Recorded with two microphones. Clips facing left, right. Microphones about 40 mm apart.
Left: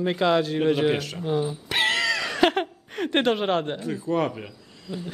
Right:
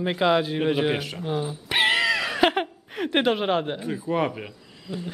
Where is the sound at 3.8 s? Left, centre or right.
Centre.